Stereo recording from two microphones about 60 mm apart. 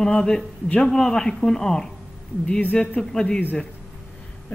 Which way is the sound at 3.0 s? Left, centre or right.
Centre.